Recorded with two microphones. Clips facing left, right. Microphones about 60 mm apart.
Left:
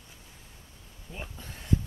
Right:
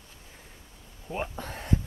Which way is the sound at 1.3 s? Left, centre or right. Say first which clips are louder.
Right 8 dB; right.